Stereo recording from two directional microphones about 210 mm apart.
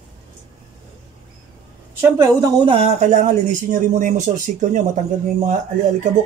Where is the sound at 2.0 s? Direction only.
15° right (ahead or behind).